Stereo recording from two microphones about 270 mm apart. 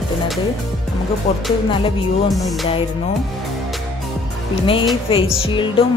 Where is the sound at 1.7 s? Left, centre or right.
Centre.